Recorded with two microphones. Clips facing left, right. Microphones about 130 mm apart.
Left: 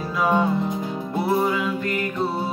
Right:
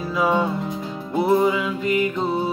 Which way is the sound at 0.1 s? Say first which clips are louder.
Even; 5° right (ahead or behind).